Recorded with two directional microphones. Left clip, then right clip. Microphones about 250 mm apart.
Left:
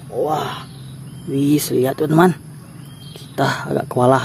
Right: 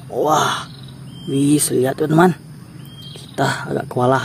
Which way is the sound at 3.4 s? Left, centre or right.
Centre.